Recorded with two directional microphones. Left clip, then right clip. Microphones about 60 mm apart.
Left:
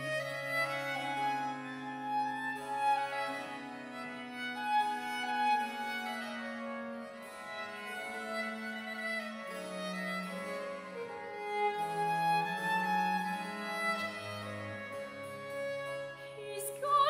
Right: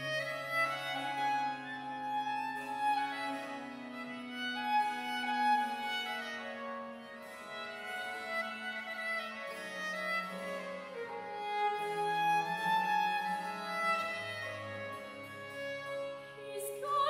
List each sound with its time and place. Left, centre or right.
0.3 s music: centre
4.4 s music: centre
9.8 s music: centre
16.8 s music: left